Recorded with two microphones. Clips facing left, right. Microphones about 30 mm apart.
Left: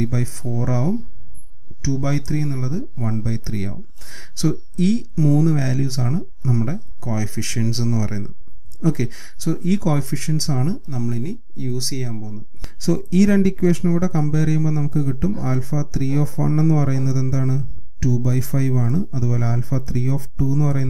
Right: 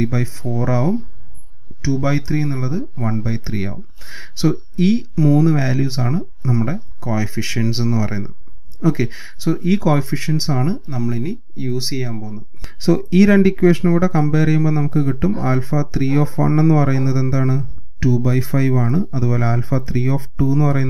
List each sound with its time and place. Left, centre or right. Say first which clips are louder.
0.0 s speech: right 3 dB; right